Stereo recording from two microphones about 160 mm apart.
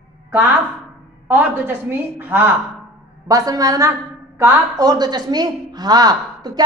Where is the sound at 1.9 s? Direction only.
15° right (ahead or behind).